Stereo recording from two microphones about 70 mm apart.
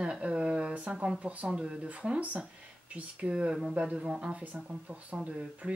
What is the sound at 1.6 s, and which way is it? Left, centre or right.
Speech, centre.